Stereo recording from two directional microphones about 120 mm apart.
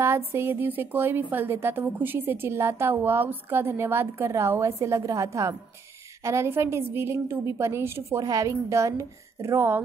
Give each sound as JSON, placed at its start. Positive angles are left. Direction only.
{"t": 0.0, "sound": "a woman's voice", "side_deg": -20}